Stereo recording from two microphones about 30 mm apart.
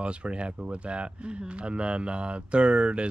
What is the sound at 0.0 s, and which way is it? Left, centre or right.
Speech, right.